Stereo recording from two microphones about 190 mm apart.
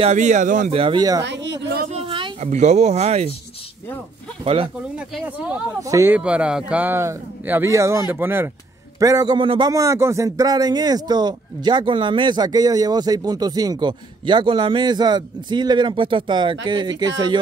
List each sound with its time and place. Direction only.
0.0 s speech: 40° right (ahead or behind)
0.7 s speech: 25° right (ahead or behind)
1.2 s a sound: 65° right (ahead or behind)
1.9 s speech: 30° right (ahead or behind)
4.9 s speech: 5° right (ahead or behind)
5.8 s speech: 15° right (ahead or behind)